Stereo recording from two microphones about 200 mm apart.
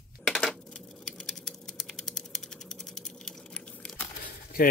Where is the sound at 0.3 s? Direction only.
5° left (ahead or behind).